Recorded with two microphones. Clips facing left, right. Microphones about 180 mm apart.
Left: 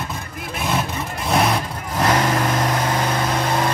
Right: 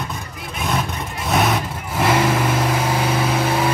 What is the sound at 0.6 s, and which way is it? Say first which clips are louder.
Vehicle: even; centre (ahead or behind).